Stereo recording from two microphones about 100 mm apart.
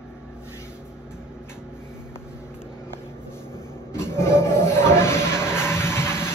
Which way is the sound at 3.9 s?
25° left (ahead or behind).